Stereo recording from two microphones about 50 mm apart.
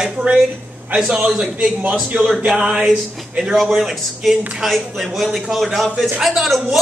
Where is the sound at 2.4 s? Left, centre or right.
Centre.